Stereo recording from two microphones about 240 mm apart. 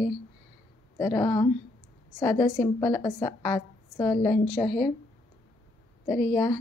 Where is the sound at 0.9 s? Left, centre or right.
Centre.